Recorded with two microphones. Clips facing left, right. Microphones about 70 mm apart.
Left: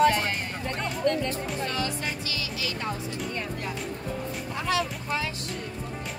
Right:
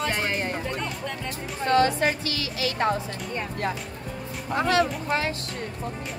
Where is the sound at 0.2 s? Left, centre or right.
Centre.